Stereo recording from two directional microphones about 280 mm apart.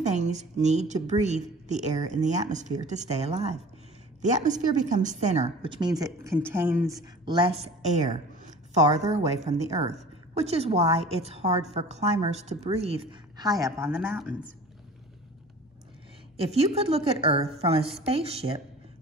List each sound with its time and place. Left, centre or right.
0.0 s a woman's voice: right; by 14.3 s centre
16.4 s a woman's voice: right